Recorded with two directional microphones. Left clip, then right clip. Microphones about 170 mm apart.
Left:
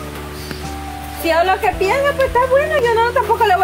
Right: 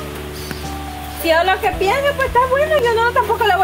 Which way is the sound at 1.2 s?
15° left (ahead or behind).